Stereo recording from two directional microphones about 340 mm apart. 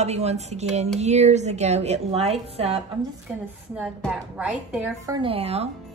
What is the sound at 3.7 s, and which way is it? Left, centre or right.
A woman's voice, centre.